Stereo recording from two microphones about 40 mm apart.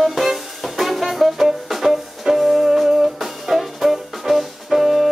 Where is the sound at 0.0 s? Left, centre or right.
Centre.